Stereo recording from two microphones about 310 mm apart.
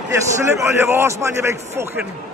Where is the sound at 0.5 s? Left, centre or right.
Centre.